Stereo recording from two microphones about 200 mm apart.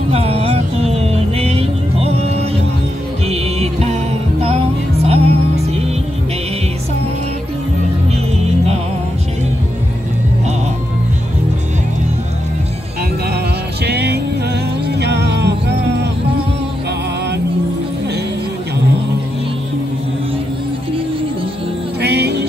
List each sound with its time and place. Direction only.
0.1 s music: 30° right (ahead or behind)
13.8 s music: 55° right (ahead or behind)
22.0 s music: 55° right (ahead or behind)